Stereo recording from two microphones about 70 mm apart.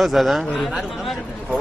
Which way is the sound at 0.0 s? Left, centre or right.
Centre.